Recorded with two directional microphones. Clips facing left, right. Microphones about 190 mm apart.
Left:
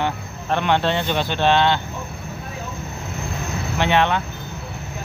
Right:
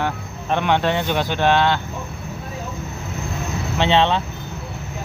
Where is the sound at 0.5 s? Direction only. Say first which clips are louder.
Right 1 dB; 15° right (ahead or behind).